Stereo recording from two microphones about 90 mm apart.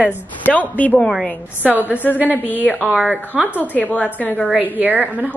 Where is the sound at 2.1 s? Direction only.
20° right (ahead or behind).